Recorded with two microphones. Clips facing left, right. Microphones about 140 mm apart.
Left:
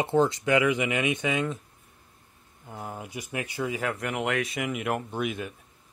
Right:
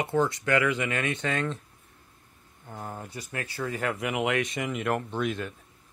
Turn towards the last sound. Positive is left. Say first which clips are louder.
# right 1 dB
turn(degrees=10)  # may be behind; listen again after turning